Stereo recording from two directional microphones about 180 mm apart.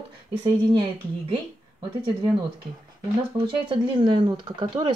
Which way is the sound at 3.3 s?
25° right (ahead or behind).